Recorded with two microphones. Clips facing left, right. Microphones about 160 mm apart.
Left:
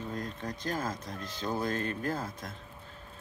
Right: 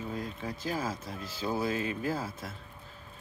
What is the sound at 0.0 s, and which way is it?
Speech, 5° right (ahead or behind).